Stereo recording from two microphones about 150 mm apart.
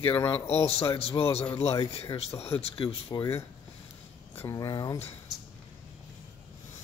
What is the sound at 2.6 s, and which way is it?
Speech, 40° left (ahead or behind).